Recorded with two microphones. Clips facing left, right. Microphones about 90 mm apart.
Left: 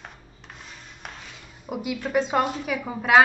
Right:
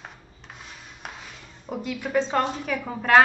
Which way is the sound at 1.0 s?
Centre (ahead or behind).